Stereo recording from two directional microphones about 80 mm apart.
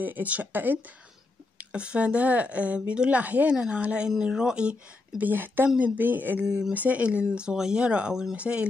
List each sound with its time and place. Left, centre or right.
0.0 s speech: right
1.6 s speech: centre